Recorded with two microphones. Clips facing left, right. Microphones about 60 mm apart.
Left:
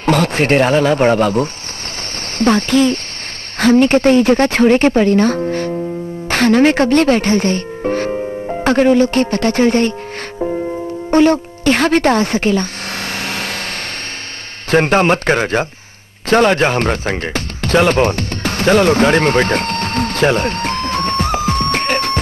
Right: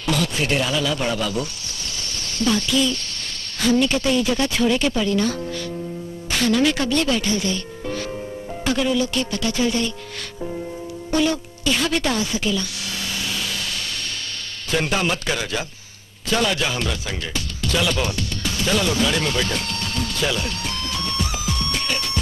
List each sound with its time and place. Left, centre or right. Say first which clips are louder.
0.0 s speech: left 8 dB; left
11.1 s music: left 9 dB; left
14.7 s speech: left 10 dB; left
16.3 s music: left 10 dB; left